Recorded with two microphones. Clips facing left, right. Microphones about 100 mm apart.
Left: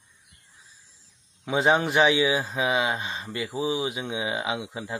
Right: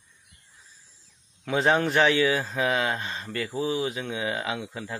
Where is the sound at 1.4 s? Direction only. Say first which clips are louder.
Left 1 dB; 15° left (ahead or behind).